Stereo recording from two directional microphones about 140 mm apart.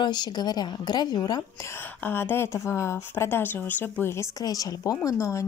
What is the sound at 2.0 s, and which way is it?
Speech, 15° left (ahead or behind).